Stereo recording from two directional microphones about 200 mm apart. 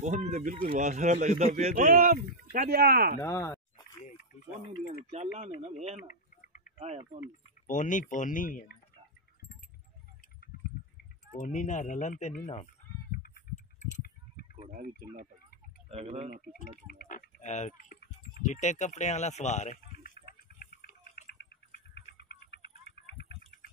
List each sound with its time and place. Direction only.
0.0 s speech: 35° right (ahead or behind)
3.2 s speech: 15° left (ahead or behind)
4.8 s speech: 35° right (ahead or behind)
6.0 s a sound: 40° left (ahead or behind)
7.6 s speech: 40° left (ahead or behind)
11.3 s speech: 40° left (ahead or behind)
13.1 s goat: 45° left (ahead or behind)
14.7 s speech: 45° right (ahead or behind)
15.9 s speech: 30° right (ahead or behind)
16.5 s speech: 40° left (ahead or behind)
20.8 s bird: 55° left (ahead or behind)